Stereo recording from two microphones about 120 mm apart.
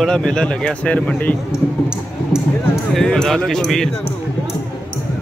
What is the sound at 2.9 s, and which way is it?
Speech, 5° left (ahead or behind).